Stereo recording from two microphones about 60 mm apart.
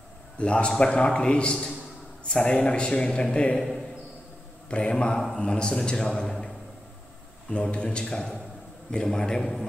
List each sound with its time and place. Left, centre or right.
0.4 s a man's voice: centre
4.6 s a man's voice: centre
7.4 s a man's voice: centre